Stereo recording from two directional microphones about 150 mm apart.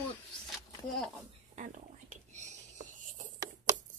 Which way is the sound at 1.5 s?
55° right (ahead or behind).